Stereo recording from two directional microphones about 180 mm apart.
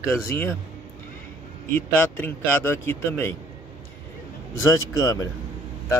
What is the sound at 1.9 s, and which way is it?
Speech, 10° left (ahead or behind).